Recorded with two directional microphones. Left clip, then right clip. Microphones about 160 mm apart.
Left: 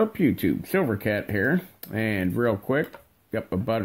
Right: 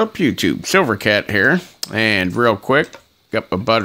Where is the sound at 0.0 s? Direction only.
30° right (ahead or behind).